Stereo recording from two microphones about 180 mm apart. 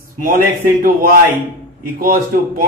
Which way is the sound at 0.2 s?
50° right (ahead or behind).